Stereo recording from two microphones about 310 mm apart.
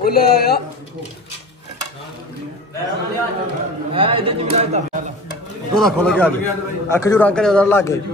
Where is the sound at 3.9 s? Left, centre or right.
Centre.